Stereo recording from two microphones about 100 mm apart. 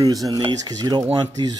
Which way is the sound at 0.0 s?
35° right (ahead or behind).